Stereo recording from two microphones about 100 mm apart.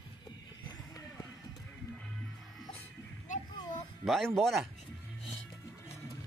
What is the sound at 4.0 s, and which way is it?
Speech, centre (ahead or behind).